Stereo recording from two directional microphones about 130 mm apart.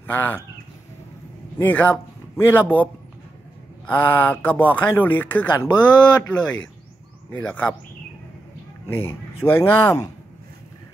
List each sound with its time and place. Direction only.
0.0 s speech: 15° left (ahead or behind)
1.6 s speech: 10° left (ahead or behind)
8.8 s speech: 20° left (ahead or behind)